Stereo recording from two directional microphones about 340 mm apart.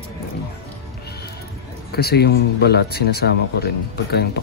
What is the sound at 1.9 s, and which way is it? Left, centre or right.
Speech, left.